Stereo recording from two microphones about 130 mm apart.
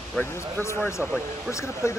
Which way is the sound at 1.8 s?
20° left (ahead or behind).